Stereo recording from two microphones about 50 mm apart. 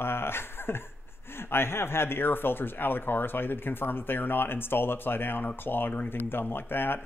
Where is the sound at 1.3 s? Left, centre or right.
Left.